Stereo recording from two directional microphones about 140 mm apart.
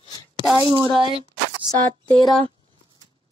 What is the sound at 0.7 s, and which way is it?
Speech, 35° right (ahead or behind).